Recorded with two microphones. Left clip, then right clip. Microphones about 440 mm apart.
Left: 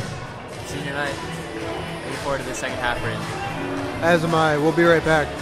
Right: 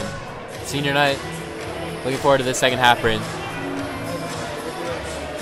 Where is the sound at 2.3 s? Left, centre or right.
Right.